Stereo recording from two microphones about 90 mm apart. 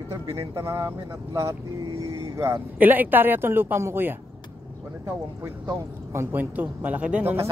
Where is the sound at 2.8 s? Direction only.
20° right (ahead or behind).